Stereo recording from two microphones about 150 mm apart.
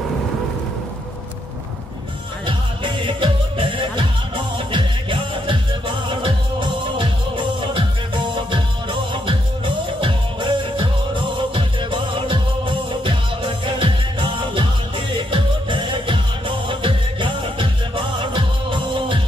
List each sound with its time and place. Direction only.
2.4 s music: 35° right (ahead or behind)